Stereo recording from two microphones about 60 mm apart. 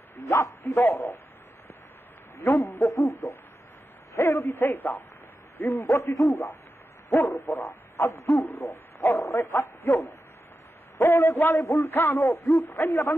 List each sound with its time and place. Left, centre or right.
0.2 s speech: left
2.3 s a man's voice: left
2.9 s speech: left
5.9 s speech: left
7.1 s owl: left
8.5 s speech: left
11.0 s speech: left